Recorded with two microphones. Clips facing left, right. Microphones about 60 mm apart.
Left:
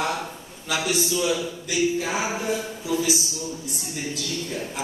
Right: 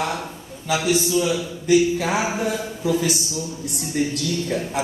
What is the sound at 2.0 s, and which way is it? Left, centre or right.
A woman's voice, right.